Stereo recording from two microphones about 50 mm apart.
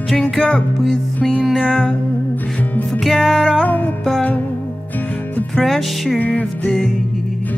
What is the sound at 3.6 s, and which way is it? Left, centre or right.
Music, left.